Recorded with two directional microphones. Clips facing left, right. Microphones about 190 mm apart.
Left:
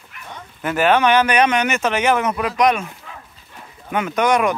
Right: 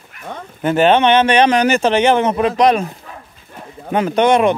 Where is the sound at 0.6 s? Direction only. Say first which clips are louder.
Right 4 dB; 25° right (ahead or behind).